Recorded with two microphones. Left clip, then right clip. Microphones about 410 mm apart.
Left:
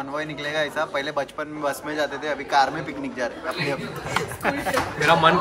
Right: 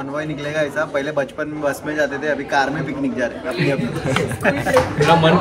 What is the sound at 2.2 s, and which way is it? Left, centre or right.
Speech, left.